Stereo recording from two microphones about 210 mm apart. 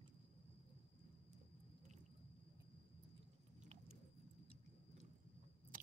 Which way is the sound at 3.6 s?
35° right (ahead or behind).